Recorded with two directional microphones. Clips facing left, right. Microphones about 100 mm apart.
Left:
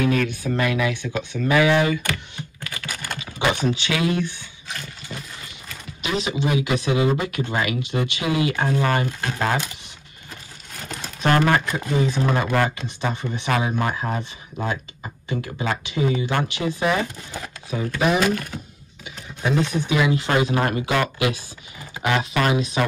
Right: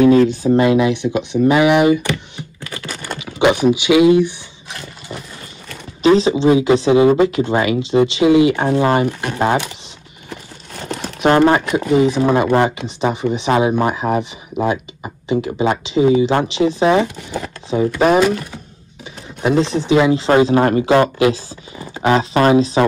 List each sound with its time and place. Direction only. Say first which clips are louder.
0.0 s speech: right 11 dB; 30° right (ahead or behind)
6.0 s speech: right 12 dB; 30° right (ahead or behind)
10.3 s horse: right 7 dB; 55° right (ahead or behind)
11.2 s speech: right 7 dB; 25° right (ahead or behind)
11.7 s speech: right 9 dB; 15° right (ahead or behind)
17.9 s speech: right 7 dB; 40° right (ahead or behind)
19.4 s speech: right 6 dB; 25° right (ahead or behind)